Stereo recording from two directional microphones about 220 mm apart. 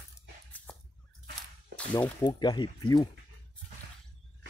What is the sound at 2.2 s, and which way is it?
Speech, 20° left (ahead or behind).